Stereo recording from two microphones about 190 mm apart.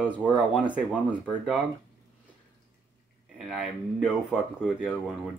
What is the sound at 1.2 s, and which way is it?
Speech, 5° right (ahead or behind).